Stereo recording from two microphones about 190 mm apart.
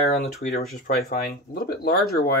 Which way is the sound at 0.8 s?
55° left (ahead or behind).